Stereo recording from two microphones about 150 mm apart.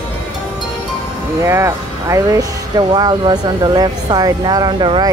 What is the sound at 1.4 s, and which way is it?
Speech, 20° right (ahead or behind).